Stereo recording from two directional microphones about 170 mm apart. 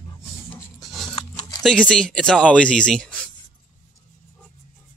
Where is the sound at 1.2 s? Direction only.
35° left (ahead or behind).